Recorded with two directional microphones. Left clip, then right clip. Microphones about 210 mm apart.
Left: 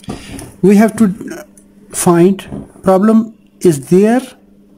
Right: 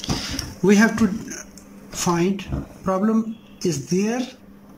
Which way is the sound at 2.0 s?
40° left (ahead or behind).